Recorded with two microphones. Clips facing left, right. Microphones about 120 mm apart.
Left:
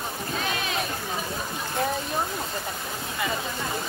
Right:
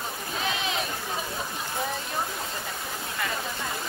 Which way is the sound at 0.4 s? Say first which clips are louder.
Right 1 dB; 25° right (ahead or behind).